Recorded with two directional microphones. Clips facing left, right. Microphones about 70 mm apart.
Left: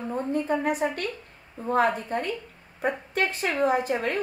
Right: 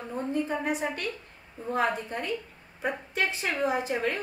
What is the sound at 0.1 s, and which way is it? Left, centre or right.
A woman's voice, left.